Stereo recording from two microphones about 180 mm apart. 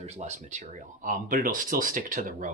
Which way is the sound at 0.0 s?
40° right (ahead or behind).